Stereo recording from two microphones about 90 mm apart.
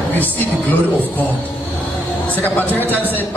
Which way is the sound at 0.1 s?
20° left (ahead or behind).